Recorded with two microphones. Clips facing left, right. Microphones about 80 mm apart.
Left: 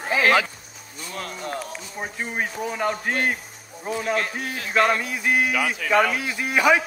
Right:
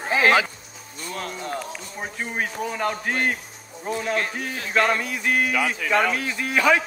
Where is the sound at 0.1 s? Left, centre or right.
Right.